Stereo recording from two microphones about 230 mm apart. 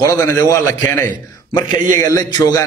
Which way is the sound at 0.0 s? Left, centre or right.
Centre.